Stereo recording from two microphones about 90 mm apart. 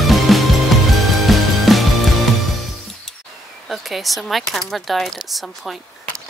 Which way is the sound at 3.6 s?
Centre (ahead or behind).